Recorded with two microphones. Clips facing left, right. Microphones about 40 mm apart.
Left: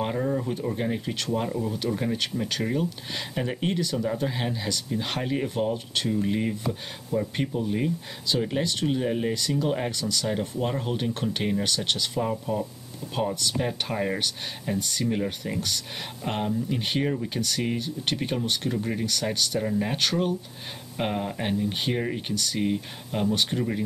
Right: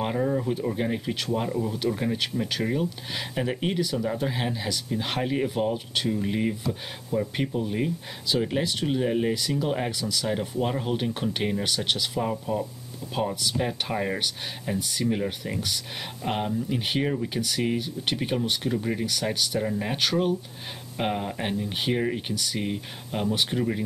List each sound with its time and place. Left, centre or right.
0.0 s speech: centre